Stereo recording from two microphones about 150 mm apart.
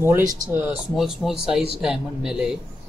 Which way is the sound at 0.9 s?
Centre (ahead or behind).